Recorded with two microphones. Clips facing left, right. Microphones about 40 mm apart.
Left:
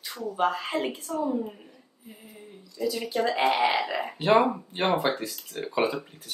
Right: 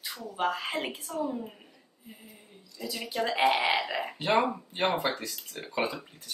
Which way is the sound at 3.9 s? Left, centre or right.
Centre.